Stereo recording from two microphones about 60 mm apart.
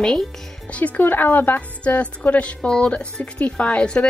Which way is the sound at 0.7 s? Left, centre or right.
Left.